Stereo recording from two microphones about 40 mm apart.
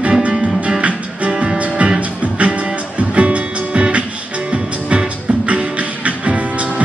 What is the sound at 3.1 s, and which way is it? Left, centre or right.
Music, right.